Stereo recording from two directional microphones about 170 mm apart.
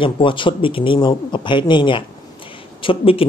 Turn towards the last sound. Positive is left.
turn(degrees=30)  # may be behind; listen again after turning